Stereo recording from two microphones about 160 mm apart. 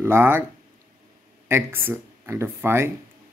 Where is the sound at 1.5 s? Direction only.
15° right (ahead or behind).